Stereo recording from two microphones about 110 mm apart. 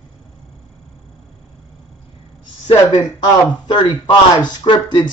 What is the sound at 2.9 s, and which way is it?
A woman's voice, 40° left (ahead or behind).